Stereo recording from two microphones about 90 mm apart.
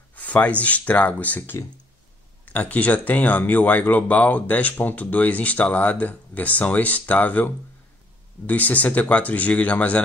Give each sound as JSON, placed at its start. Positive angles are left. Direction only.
{"t": 0.1, "sound": "speech", "side_deg": 15}